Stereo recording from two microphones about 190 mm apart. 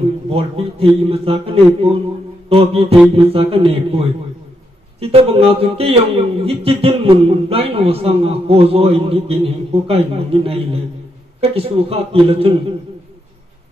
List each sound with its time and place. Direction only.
0.0 s a man's voice: 30° right (ahead or behind)